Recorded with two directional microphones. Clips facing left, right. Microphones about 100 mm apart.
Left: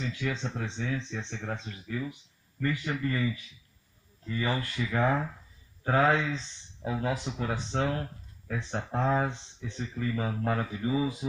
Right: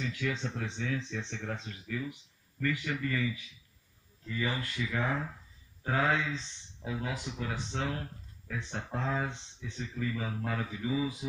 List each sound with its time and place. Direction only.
0.0 s speech: 30° left (ahead or behind); by 11.1 s 45° left (ahead or behind)